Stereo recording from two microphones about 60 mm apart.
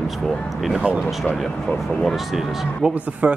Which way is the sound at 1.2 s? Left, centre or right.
Centre.